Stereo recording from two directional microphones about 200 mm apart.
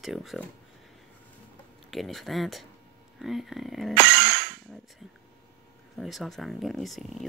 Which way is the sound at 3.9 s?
50° right (ahead or behind).